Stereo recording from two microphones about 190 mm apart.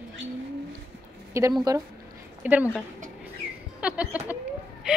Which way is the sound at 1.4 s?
15° right (ahead or behind).